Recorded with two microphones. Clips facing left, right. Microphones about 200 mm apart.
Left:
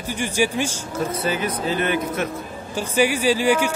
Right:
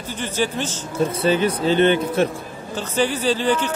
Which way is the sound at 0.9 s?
30° right (ahead or behind).